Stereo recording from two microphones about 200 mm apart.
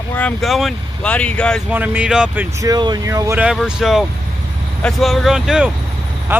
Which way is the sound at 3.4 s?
5° right (ahead or behind).